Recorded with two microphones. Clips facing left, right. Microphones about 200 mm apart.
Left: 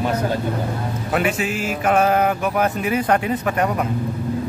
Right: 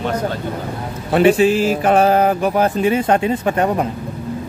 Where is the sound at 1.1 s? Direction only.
30° right (ahead or behind).